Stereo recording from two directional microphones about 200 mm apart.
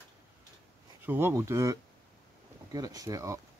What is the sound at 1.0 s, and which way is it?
Speech, 10° right (ahead or behind).